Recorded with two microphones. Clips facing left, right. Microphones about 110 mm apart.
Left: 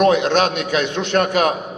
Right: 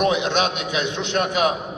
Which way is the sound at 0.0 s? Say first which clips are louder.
Left 5 dB; 45° left (ahead or behind).